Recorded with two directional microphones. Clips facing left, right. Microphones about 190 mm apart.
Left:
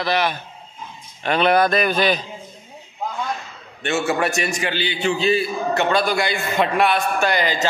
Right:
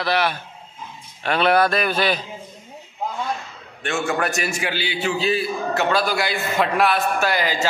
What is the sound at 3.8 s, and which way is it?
A man's voice, 5° left (ahead or behind).